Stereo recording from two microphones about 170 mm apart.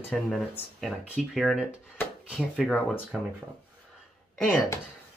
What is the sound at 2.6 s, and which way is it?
Speech, 5° left (ahead or behind).